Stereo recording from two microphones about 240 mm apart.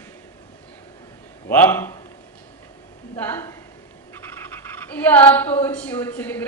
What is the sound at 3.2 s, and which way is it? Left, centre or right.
Speech, centre.